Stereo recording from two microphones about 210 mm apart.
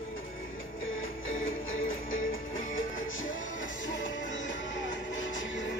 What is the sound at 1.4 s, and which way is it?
Music, 70° left (ahead or behind).